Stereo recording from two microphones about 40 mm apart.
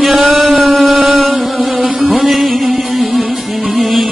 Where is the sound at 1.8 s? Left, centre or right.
Right.